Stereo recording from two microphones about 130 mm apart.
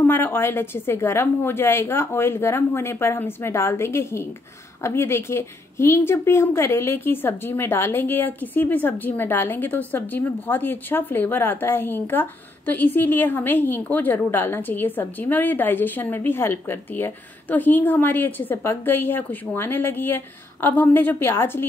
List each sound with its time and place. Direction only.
0.0 s a woman's voice: 15° left (ahead or behind)